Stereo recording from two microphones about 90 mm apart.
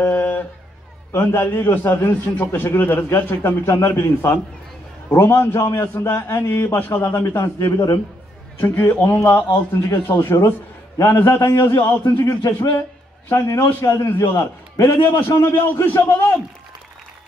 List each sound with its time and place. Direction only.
0.0 s a sound: 20° left (ahead or behind)
1.1 s a man's voice: 25° left (ahead or behind)
8.5 s a man's voice: 20° left (ahead or behind)